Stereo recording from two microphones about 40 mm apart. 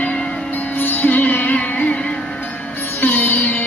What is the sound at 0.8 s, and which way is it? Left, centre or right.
Music, left.